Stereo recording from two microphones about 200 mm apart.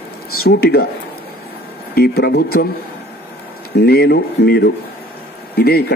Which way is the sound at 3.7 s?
50° left (ahead or behind).